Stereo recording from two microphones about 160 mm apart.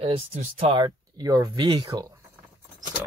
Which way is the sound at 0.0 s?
35° right (ahead or behind).